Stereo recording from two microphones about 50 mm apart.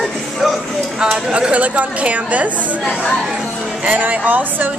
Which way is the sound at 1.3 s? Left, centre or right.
Right.